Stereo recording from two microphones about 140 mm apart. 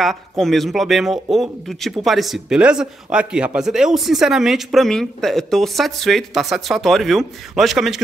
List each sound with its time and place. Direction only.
0.0 s speech: centre (ahead or behind)